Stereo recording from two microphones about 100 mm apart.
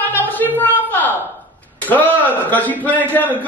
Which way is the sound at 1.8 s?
15° left (ahead or behind).